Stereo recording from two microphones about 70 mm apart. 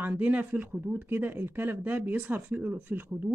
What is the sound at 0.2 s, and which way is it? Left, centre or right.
Speech, right.